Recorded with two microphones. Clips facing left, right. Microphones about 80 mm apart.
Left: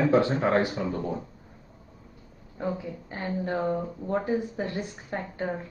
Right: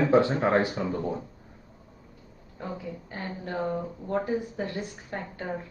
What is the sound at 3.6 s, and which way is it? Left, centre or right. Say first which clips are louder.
Speech: right 1 dB; centre.